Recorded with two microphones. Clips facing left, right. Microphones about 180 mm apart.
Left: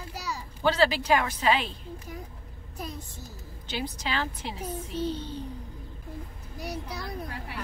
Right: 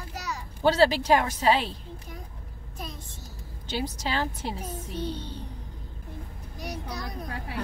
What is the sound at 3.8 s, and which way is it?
Speech, 40° right (ahead or behind).